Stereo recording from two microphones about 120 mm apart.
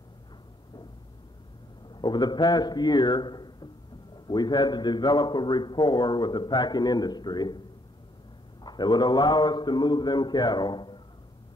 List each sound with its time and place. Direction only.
2.0 s a man's voice: 35° left (ahead or behind)
8.6 s a man's voice: 35° left (ahead or behind)